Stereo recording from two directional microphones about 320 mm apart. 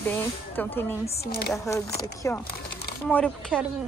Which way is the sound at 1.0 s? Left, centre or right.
Left.